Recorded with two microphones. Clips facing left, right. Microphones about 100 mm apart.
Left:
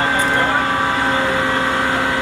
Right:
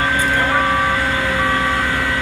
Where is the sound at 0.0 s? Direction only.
30° left (ahead or behind).